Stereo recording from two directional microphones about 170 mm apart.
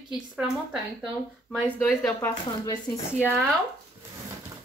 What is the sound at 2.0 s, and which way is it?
Speech, 20° left (ahead or behind).